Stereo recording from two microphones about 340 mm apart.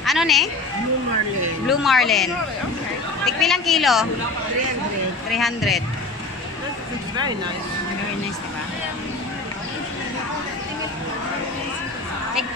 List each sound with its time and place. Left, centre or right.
0.0 s a sound: centre
1.7 s a woman's voice: centre
5.3 s a woman's voice: centre